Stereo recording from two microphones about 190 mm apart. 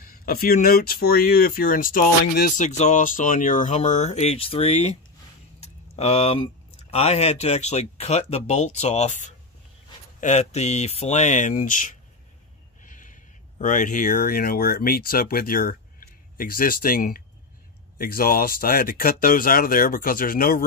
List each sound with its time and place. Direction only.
0.0 s speech: 50° left (ahead or behind)